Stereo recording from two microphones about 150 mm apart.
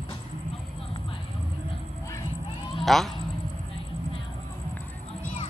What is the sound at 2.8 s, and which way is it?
Speech, centre (ahead or behind).